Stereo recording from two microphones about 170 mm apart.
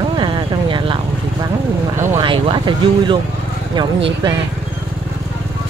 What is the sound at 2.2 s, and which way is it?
Speech, 30° right (ahead or behind).